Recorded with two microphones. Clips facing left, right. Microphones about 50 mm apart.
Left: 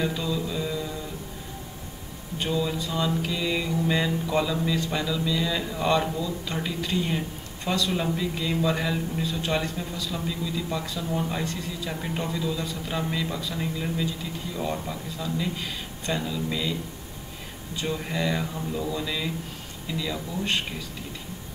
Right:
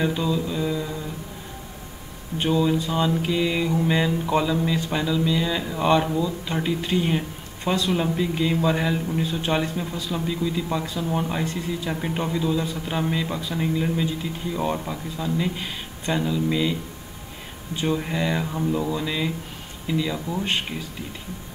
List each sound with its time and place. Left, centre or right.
0.1 s mantra: centre
2.3 s speech: right
2.7 s a sound: right
3.2 s mantra: right
3.7 s speech: right
5.8 s speech: right
6.0 s mantra: centre
6.4 s speech: right
11.2 s speech: right
17.7 s speech: right
18.0 s mantra: centre
18.5 s speech: right